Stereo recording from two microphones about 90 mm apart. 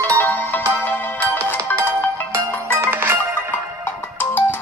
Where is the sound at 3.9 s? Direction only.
25° left (ahead or behind).